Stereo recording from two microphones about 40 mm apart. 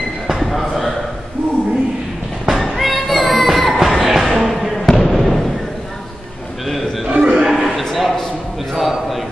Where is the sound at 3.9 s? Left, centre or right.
Centre.